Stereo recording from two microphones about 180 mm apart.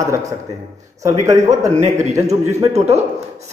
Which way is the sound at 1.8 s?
40° right (ahead or behind).